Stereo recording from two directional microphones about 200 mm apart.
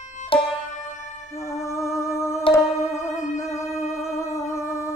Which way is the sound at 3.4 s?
15° left (ahead or behind).